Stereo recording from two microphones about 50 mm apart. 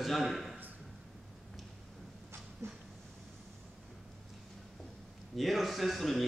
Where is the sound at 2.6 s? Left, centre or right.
Right.